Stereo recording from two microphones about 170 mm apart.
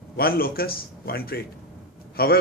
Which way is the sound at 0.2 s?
60° left (ahead or behind).